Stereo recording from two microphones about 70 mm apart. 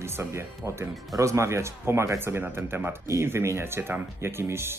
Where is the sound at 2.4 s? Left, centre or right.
Right.